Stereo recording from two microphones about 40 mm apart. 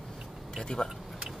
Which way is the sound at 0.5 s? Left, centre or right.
Centre.